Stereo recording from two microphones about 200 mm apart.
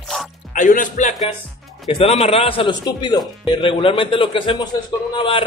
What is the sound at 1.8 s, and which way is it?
A man's voice, 30° left (ahead or behind).